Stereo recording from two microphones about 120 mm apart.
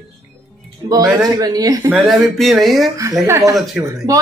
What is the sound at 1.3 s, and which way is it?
Speech, 30° right (ahead or behind).